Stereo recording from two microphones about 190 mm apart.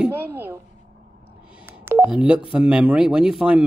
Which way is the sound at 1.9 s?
10° right (ahead or behind).